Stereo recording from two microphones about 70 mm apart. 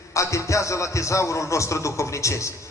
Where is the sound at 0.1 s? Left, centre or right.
Left.